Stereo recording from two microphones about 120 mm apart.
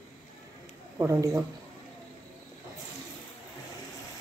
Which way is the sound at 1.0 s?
25° right (ahead or behind).